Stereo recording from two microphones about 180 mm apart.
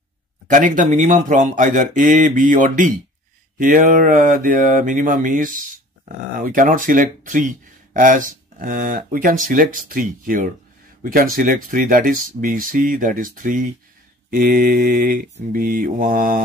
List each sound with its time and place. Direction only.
0.5 s mantra: 45° right (ahead or behind)